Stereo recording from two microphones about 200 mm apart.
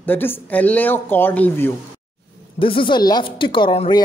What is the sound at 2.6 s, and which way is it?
Speech, 25° left (ahead or behind).